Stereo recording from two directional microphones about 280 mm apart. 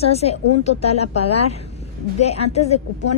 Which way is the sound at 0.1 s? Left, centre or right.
Left.